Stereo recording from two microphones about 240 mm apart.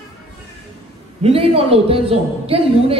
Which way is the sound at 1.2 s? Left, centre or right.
Right.